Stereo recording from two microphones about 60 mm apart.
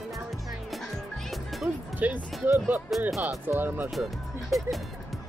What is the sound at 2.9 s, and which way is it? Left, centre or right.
Speech, centre.